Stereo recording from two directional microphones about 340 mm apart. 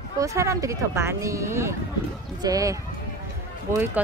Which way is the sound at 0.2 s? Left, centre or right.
Centre.